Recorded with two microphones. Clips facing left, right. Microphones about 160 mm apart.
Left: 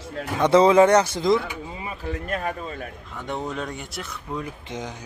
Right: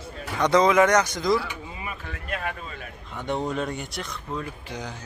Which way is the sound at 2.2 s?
40° left (ahead or behind).